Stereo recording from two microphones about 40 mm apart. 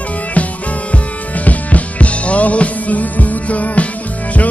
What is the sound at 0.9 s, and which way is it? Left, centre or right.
Music, left.